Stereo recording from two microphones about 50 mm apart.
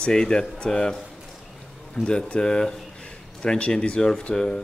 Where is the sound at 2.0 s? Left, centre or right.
Centre.